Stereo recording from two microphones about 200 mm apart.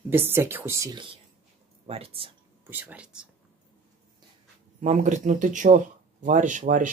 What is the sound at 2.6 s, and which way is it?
Speech, 10° right (ahead or behind).